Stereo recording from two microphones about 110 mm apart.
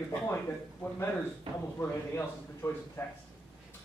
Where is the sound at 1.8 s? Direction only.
20° left (ahead or behind).